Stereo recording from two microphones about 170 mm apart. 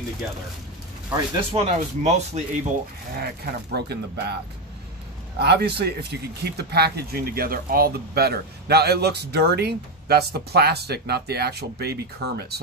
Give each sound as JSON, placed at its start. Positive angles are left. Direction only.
{"t": 1.1, "sound": "speech", "side_deg": -35}
{"t": 3.2, "sound": "speech", "side_deg": -70}
{"t": 5.4, "sound": "speech", "side_deg": -75}